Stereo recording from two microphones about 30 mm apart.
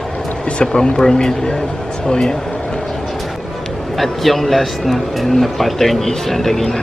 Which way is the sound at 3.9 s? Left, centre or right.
Centre.